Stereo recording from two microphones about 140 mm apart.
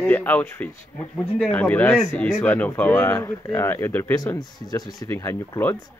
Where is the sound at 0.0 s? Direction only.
10° left (ahead or behind); by 4.9 s 30° left (ahead or behind).